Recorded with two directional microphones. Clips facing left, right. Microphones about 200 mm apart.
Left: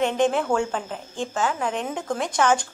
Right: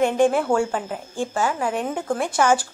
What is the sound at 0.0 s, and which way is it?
A woman's voice, 10° right (ahead or behind).